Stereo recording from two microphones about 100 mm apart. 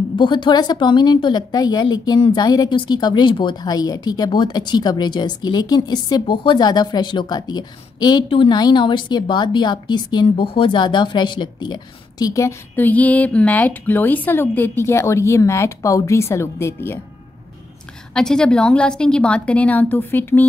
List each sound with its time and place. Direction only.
0.1 s a woman's voice: 55° left (ahead or behind)
8.3 s a woman's voice: 60° left (ahead or behind)
8.5 s speech: 45° left (ahead or behind)
10.2 s speech: 65° left (ahead or behind); by 12.5 s 35° left (ahead or behind)
12.7 s a woman's voice: 15° left (ahead or behind)
18.1 s a woman's voice: 5° left (ahead or behind)